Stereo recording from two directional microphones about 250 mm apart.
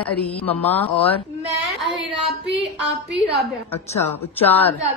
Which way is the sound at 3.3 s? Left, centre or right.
Centre.